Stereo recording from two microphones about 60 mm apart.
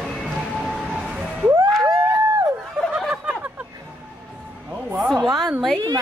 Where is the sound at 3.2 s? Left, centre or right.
Right.